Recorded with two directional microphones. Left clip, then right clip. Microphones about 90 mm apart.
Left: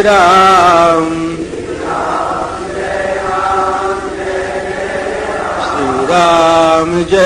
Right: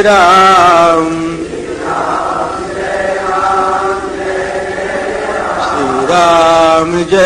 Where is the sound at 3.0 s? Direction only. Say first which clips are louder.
Right 2 dB; 50° right (ahead or behind).